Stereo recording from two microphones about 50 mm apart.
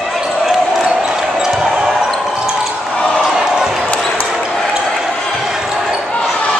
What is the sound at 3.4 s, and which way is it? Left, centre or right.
Basketball bounce, centre.